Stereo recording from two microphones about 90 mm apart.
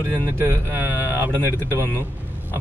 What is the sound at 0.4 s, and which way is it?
Speech, 25° right (ahead or behind).